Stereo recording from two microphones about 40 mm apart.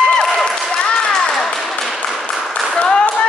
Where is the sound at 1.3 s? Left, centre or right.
Centre.